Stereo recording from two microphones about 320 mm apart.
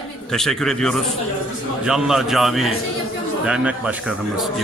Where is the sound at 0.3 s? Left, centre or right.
Centre.